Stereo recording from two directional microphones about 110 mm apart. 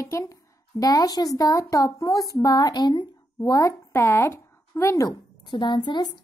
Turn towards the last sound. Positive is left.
turn(degrees=40)  # may be behind; listen again after turning